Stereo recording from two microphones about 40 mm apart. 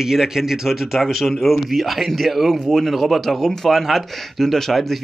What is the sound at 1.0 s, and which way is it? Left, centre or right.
Speech, centre.